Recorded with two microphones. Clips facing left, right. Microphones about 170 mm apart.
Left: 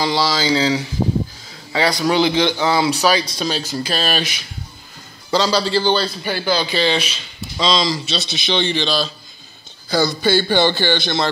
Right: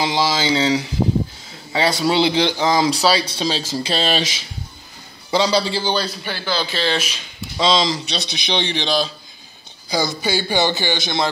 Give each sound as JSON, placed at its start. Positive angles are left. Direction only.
{"t": 0.0, "sound": "a man's voice", "side_deg": -15}
{"t": 4.2, "sound": "speech", "side_deg": -90}
{"t": 5.3, "sound": "a man's voice", "side_deg": -15}
{"t": 6.0, "sound": "a man's voice", "side_deg": 5}
{"t": 7.7, "sound": "a man's voice", "side_deg": -20}